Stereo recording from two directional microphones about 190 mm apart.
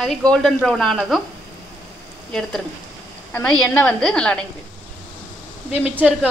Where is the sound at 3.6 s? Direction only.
5° left (ahead or behind).